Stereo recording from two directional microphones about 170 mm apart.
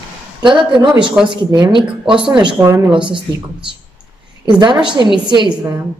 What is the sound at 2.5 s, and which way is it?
Speech, 15° right (ahead or behind).